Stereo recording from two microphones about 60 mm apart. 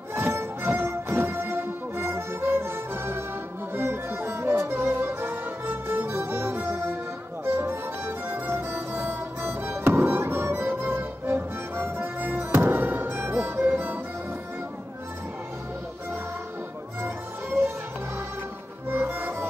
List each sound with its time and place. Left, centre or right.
0.1 s music: right
0.7 s music: right
17.0 s music: right
18.9 s music: right